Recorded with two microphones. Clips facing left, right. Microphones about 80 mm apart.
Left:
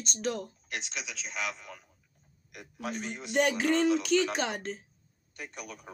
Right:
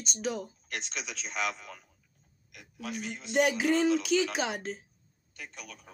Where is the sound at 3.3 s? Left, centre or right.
Centre.